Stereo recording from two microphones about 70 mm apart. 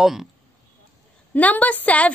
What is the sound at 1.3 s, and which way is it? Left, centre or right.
Speech, left.